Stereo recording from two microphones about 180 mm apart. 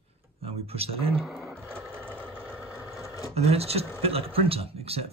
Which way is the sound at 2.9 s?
15° left (ahead or behind).